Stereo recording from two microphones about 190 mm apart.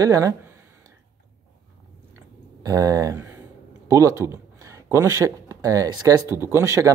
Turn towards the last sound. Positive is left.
turn(degrees=-15)  # may be behind; listen again after turning